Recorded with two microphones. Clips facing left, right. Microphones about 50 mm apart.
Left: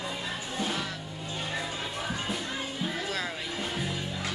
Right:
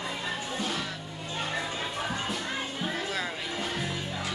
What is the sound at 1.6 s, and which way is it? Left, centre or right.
Music, right.